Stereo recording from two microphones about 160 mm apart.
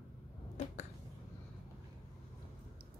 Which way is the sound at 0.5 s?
50° left (ahead or behind).